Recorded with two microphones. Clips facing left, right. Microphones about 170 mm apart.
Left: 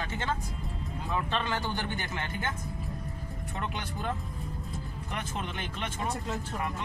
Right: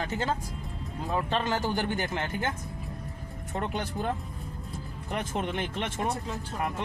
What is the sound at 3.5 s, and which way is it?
Speech, 45° right (ahead or behind).